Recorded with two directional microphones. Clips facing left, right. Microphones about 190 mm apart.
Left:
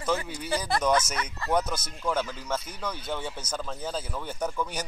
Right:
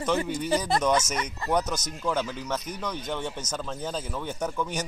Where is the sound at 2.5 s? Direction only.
15° right (ahead or behind).